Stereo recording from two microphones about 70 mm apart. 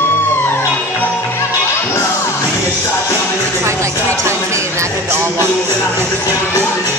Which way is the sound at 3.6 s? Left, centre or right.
Right.